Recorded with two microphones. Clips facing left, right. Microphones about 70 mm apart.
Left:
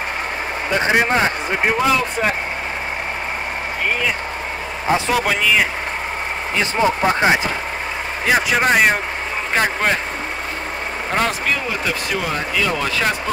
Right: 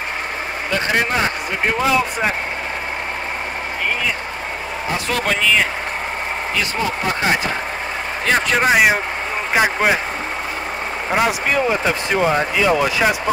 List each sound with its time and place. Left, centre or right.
0.7 s speech: left
5.1 s a man's voice: centre
6.6 s speech: left
8.3 s speech: centre
11.1 s speech: centre
11.5 s speech: right
12.6 s speech: centre